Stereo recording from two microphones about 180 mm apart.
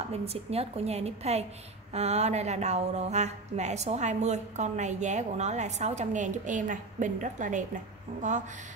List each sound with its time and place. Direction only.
0.1 s speech: 35° right (ahead or behind)